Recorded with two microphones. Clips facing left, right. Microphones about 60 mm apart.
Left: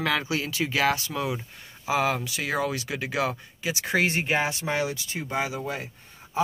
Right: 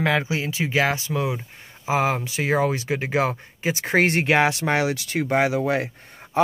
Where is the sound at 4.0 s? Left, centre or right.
Right.